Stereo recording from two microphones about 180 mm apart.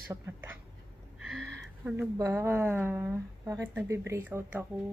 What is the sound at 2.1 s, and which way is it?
Speech, 15° right (ahead or behind).